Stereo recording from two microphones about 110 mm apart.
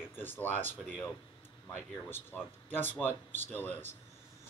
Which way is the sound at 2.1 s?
20° left (ahead or behind).